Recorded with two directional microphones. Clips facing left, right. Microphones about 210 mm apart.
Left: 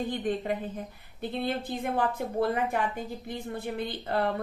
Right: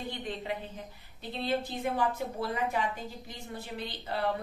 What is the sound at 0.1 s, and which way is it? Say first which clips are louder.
A woman's voice: left 7 dB; 50° left (ahead or behind).